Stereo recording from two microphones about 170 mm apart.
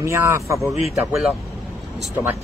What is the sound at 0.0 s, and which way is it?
Speech, 15° right (ahead or behind).